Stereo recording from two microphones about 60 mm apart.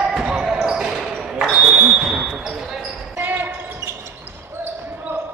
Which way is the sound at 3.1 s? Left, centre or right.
Right.